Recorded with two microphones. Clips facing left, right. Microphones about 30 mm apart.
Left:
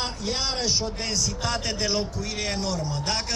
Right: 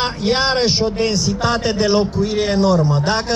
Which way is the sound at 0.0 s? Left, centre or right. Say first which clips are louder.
Right 11 dB; right.